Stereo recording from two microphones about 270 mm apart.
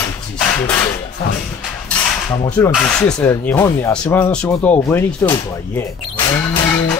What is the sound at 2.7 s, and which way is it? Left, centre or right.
Speech, centre.